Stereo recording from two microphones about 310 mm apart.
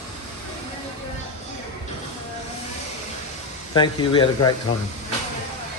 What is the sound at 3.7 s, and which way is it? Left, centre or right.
Speech, centre.